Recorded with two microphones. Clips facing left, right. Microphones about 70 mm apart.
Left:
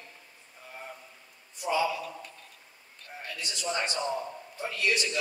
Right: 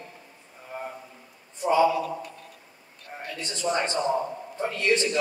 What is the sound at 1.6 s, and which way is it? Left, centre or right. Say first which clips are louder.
Speech: right 7 dB; right.